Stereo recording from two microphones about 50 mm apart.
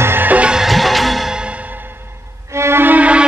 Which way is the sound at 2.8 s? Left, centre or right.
Right.